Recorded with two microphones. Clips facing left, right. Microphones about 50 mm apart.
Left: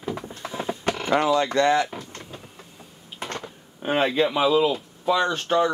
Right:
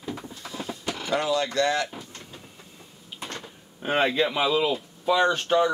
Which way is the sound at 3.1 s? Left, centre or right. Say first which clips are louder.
Left 4 dB; left.